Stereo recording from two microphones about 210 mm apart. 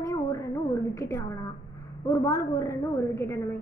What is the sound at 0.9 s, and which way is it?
A woman's voice, 15° left (ahead or behind).